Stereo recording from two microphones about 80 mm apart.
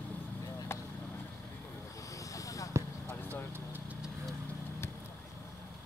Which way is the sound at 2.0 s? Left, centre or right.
Left.